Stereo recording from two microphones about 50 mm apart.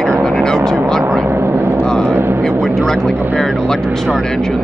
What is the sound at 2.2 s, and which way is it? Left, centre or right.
Vehicle, right.